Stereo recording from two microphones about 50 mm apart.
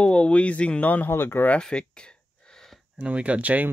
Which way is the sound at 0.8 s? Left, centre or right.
Left.